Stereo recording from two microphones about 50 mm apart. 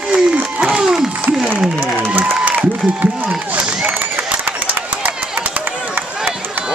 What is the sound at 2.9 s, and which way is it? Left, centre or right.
Speech, right.